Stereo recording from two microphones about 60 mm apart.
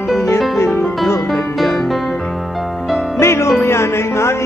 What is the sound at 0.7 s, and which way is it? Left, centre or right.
Music, left.